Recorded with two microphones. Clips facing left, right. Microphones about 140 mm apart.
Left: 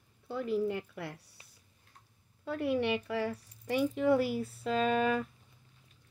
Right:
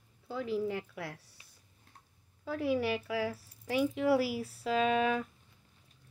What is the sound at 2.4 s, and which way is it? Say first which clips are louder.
Speech: even; centre (ahead or behind).